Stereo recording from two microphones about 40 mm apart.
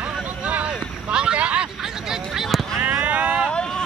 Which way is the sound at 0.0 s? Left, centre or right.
Right.